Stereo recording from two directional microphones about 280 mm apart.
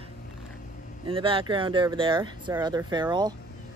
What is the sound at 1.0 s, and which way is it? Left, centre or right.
A woman's voice, centre.